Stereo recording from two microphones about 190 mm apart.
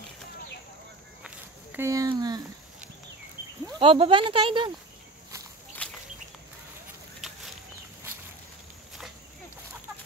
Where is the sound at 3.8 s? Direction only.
30° right (ahead or behind).